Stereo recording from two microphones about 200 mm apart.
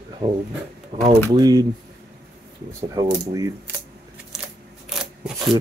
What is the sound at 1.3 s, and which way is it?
Speech, 20° right (ahead or behind).